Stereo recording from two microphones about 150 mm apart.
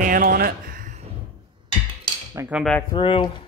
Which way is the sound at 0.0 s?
65° right (ahead or behind).